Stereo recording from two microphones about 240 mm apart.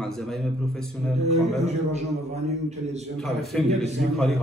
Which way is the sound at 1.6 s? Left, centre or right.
Right.